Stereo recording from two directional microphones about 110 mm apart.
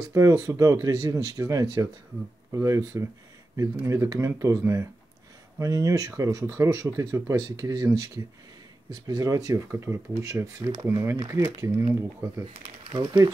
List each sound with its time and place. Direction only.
0.1 s speech: 30° right (ahead or behind)
12.5 s speech: 50° right (ahead or behind)